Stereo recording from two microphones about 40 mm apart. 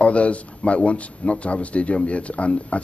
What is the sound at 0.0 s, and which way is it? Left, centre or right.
A man's voice, left.